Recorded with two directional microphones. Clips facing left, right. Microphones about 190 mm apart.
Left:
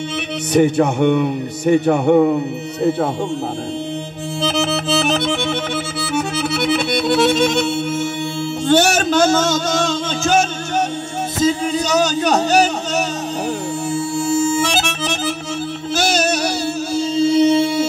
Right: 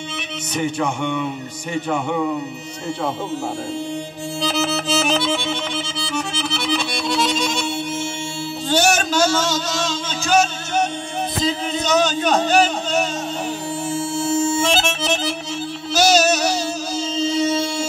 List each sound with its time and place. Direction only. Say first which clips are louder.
0.6 s speech: left 8 dB; 60° left (ahead or behind)
4.4 s music: left 3 dB; 55° left (ahead or behind)
8.6 s speech: left 4 dB; 55° left (ahead or behind)
11.4 s speech: left 6 dB; 40° left (ahead or behind)
15.9 s music: right 2 dB; 55° left (ahead or behind)